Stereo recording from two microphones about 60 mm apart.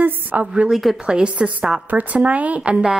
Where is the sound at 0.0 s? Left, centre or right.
Right.